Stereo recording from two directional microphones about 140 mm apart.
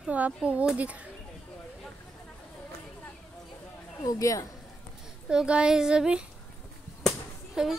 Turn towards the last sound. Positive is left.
turn(degrees=-5)  # may be behind; listen again after turning